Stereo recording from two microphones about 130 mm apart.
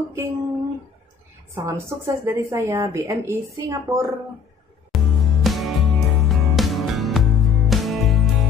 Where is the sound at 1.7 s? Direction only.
20° right (ahead or behind).